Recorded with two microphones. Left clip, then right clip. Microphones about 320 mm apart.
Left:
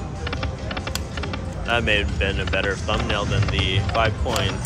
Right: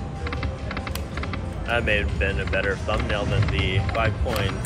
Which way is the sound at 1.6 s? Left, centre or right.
Centre.